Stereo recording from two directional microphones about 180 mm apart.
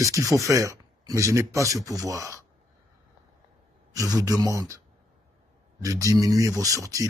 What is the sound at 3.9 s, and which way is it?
Speech, 20° right (ahead or behind).